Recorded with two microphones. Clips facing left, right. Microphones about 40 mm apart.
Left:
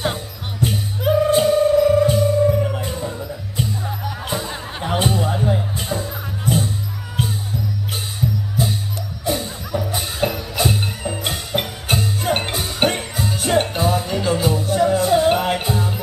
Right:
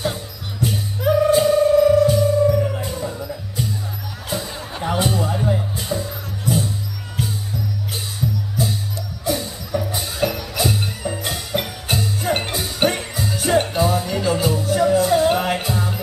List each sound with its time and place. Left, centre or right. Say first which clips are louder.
0.0 s music: left 1 dB; left
9.2 s music: even; left
15.3 s music: left 1 dB; centre